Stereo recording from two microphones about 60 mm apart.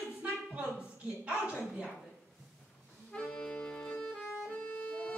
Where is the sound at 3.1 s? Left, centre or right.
Centre.